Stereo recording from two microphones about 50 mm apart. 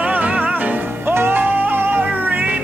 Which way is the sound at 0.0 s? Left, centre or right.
Right.